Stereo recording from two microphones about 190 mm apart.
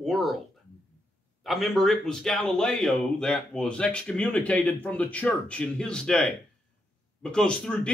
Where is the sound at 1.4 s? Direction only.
Centre (ahead or behind).